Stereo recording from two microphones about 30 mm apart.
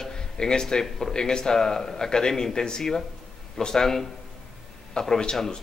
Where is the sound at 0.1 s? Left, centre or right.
Left.